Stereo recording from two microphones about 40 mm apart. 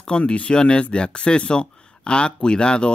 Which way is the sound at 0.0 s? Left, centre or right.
Left.